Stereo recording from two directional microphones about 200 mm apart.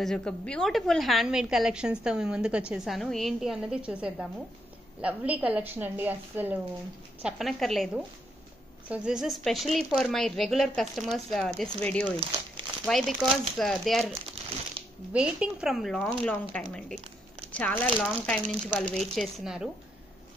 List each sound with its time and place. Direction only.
0.0 s a woman's voice: 5° left (ahead or behind)
14.8 s music: 30° right (ahead or behind)
15.1 s a woman's voice: 5° right (ahead or behind)